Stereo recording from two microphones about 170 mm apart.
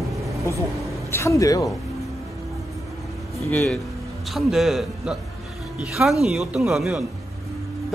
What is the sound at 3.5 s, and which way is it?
A man's voice, 5° left (ahead or behind).